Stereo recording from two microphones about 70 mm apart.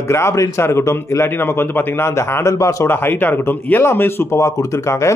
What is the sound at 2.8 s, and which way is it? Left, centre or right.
A man's voice, left.